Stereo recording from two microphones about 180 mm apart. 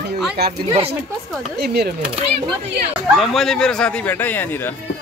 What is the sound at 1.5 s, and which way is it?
Speech, 60° right (ahead or behind).